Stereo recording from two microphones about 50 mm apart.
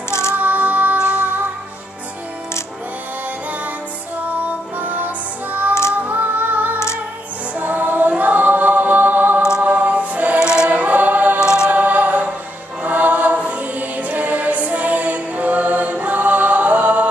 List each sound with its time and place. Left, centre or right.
0.1 s music: left
0.4 s music: right
6.0 s female singing: right
7.5 s music: right
8.2 s a capella: right
9.6 s choir: right
10.4 s choir: centre
10.7 s choir: right
11.3 s choir: centre
11.7 s a capella: right
12.8 s choir: right